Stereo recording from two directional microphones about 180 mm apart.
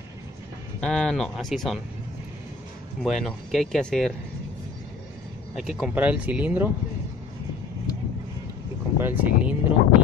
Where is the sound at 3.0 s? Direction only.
Centre (ahead or behind).